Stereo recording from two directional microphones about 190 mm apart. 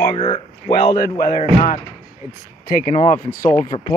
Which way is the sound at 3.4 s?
20° left (ahead or behind).